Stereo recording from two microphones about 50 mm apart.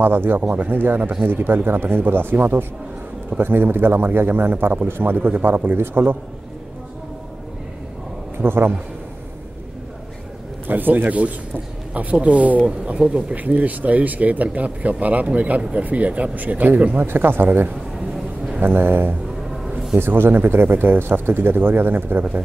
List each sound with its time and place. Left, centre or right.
0.0 s speech: right
8.4 s speech: right
10.7 s speech: right
17.0 s speech: right
17.9 s a sound: centre
18.6 s speech: right